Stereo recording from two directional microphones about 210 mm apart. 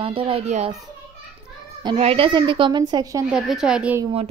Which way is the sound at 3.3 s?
Centre (ahead or behind).